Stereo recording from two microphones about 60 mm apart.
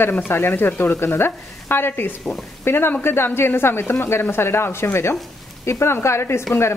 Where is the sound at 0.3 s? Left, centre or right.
Left.